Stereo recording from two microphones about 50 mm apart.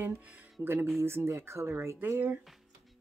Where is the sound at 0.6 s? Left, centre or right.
Right.